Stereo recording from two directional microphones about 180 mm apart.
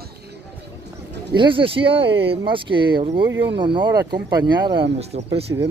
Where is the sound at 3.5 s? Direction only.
25° right (ahead or behind).